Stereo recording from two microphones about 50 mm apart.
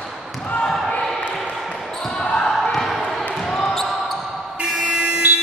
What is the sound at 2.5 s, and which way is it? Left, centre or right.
Basketball bounce, centre.